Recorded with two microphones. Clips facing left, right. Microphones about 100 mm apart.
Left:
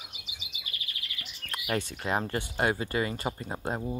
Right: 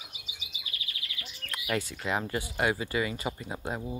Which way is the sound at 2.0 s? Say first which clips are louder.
Left 1 dB; 40° left (ahead or behind).